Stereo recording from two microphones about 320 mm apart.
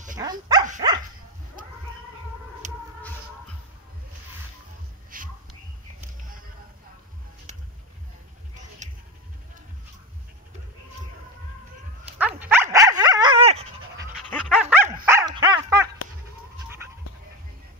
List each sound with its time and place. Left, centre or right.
0.2 s speech: centre
2.6 s music: right
5.1 s a sound: right
8.8 s sheep: right
12.2 s dog: centre
14.5 s dog: centre